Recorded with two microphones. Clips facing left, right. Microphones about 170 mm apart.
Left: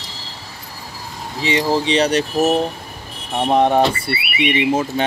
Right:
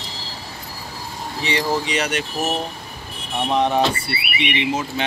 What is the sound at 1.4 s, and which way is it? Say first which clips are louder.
Speech: left 4 dB; 25° left (ahead or behind).